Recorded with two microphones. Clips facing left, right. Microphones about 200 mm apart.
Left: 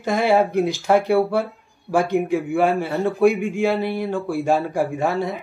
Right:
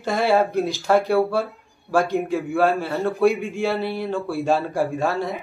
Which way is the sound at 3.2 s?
15° left (ahead or behind).